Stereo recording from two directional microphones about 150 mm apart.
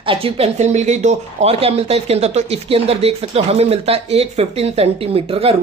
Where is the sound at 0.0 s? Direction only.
35° right (ahead or behind).